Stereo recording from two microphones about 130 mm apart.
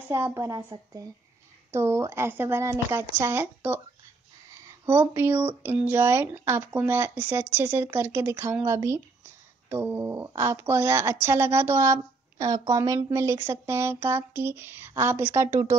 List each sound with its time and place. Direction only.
0.1 s speech: 20° right (ahead or behind)